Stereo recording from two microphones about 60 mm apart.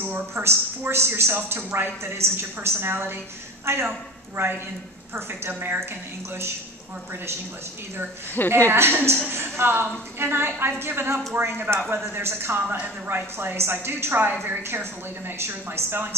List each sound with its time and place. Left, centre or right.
0.0 s a woman's voice: right
5.5 s a woman's voice: right
8.5 s a woman's voice: right
12.6 s a woman's voice: right